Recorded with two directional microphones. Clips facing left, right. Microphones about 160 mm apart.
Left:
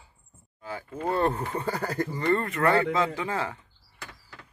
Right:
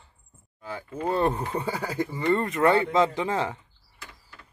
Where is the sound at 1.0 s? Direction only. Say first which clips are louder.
Right 1 dB; 15° right (ahead or behind).